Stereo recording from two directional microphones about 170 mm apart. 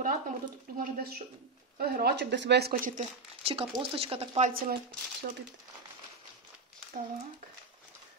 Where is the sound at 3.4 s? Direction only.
35° right (ahead or behind).